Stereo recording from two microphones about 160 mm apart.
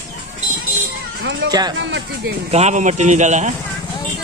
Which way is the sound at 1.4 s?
90° right.